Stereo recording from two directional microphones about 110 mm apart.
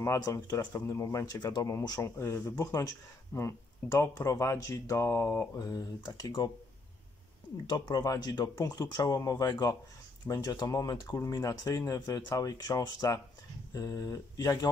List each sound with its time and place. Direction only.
0.0 s speech: 25° left (ahead or behind)
7.6 s speech: 35° left (ahead or behind)